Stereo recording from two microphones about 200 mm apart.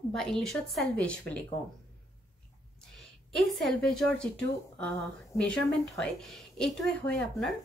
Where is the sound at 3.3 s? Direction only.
Centre (ahead or behind).